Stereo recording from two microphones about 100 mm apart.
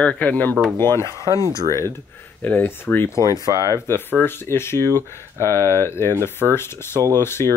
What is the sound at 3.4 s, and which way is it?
Speech, 35° right (ahead or behind).